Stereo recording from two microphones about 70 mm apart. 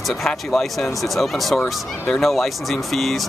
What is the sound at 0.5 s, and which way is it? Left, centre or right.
Speech, centre.